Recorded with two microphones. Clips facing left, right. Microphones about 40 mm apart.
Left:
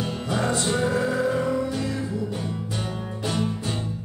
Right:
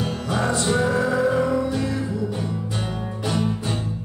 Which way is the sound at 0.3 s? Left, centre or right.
Right.